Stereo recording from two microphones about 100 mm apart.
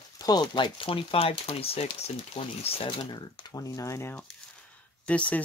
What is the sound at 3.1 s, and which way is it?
Speech, 50° left (ahead or behind).